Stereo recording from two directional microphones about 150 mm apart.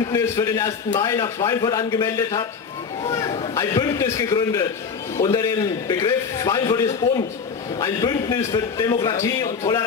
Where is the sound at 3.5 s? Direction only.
25° left (ahead or behind).